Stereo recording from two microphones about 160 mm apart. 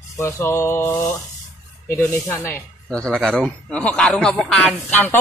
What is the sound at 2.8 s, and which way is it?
Speech, 5° left (ahead or behind).